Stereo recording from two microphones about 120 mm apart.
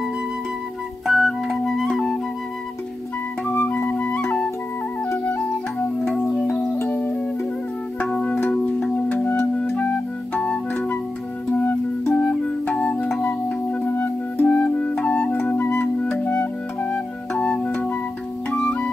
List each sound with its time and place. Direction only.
1.0 s music: centre (ahead or behind)
3.4 s flute: 15° left (ahead or behind)
5.0 s music: 15° left (ahead or behind)